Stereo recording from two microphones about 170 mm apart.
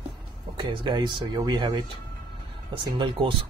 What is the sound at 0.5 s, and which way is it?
Speech, 25° right (ahead or behind).